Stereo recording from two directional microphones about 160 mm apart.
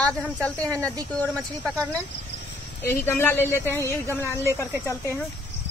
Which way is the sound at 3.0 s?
15° left (ahead or behind).